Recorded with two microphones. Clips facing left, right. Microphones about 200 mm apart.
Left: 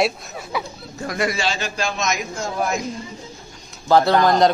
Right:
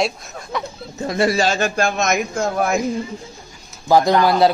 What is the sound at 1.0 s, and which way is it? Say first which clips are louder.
A man's voice: right 5 dB; 30° right (ahead or behind).